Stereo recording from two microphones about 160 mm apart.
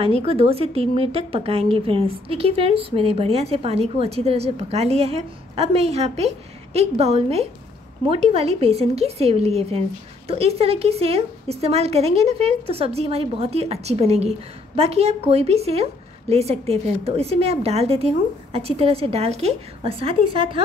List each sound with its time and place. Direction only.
0.0 s a woman's voice: 40° right (ahead or behind)